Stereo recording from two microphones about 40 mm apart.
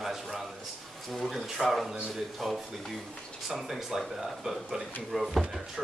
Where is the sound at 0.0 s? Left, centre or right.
Centre.